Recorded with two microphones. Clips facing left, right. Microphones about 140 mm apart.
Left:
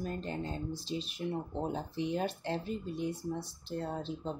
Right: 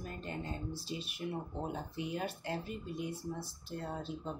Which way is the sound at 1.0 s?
30° left (ahead or behind).